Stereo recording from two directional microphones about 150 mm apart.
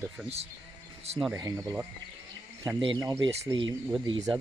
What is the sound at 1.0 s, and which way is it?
Speech, 45° right (ahead or behind).